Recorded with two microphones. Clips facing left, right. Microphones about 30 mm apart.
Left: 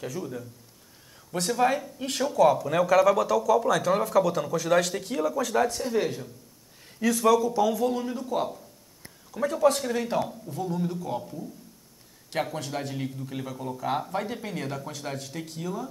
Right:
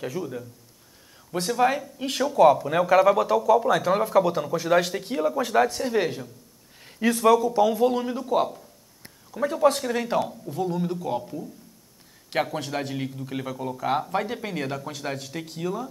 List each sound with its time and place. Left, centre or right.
0.2 s speech: centre
9.3 s speech: centre
12.5 s speech: centre